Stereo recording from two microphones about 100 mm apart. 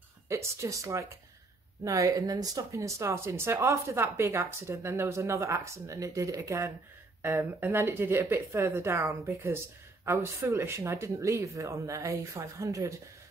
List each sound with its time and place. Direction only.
0.3 s speech: 30° right (ahead or behind)